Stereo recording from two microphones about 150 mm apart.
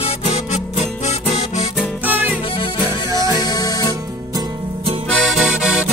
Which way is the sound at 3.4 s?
25° left (ahead or behind).